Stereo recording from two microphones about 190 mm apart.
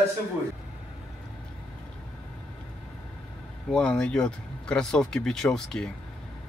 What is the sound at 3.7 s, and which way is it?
Speech, 5° left (ahead or behind).